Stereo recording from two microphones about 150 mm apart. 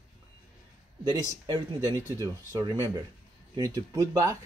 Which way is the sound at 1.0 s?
25° right (ahead or behind).